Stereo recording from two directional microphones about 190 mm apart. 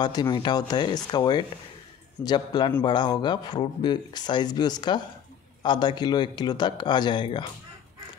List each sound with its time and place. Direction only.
0.0 s speech: 20° left (ahead or behind)